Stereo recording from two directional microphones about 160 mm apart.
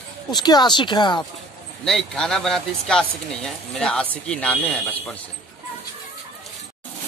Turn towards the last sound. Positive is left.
turn(degrees=5)  # may be behind; listen again after turning